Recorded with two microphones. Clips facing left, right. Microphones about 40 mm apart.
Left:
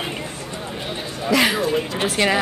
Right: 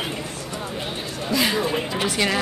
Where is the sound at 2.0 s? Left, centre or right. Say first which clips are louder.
Left 2 dB; centre.